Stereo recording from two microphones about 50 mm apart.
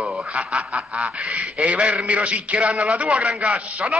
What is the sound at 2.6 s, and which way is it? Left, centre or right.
A man's voice, centre.